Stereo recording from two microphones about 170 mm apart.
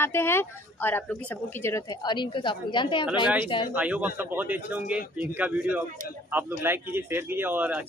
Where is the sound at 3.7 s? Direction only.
10° right (ahead or behind).